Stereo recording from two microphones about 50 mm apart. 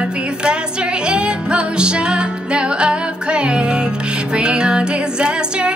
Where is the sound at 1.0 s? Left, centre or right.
Right.